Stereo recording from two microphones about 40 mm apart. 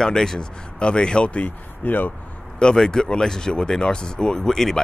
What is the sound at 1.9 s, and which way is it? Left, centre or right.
Speech, left.